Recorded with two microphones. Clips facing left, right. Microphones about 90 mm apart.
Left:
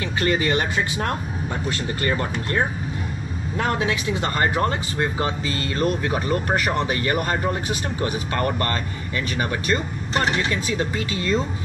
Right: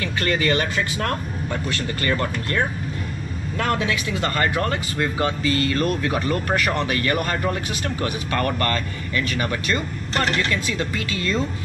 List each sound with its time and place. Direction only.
0.2 s speech: 20° left (ahead or behind)
3.6 s speech: 25° left (ahead or behind)
6.9 s speech: 20° left (ahead or behind)
10.1 s speech: 5° left (ahead or behind)